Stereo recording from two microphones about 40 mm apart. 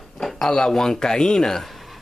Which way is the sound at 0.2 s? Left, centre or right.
Centre.